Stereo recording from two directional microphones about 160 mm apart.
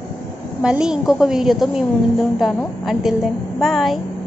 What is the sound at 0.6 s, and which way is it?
A woman's voice, 5° right (ahead or behind).